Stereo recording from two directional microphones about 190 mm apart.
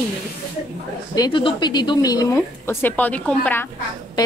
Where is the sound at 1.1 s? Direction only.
25° left (ahead or behind); by 3.6 s 10° left (ahead or behind).